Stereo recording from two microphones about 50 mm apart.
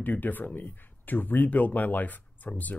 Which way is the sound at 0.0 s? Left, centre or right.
Left.